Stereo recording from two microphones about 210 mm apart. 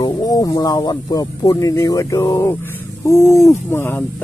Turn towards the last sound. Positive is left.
turn(degrees=10)  # may be behind; listen again after turning